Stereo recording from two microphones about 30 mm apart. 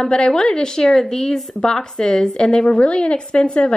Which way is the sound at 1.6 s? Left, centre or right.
Left.